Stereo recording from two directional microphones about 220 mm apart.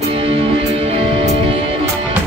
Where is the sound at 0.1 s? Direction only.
25° right (ahead or behind).